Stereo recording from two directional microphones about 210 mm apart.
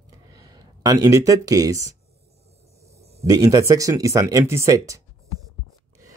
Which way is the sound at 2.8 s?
15° right (ahead or behind).